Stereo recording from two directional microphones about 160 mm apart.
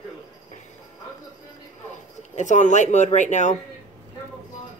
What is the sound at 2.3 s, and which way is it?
A man's voice, 50° left (ahead or behind).